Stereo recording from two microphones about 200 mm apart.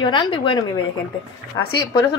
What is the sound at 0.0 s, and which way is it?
Speech, 25° left (ahead or behind).